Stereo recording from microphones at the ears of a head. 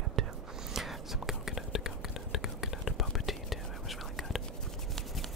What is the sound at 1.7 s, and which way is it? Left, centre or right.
Whispering, left.